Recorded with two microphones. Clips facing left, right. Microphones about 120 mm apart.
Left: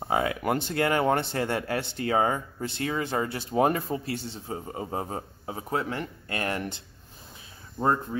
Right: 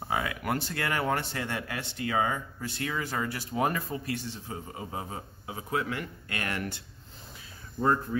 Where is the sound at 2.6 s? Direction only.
25° left (ahead or behind).